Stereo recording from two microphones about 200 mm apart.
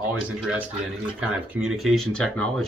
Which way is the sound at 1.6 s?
Centre (ahead or behind).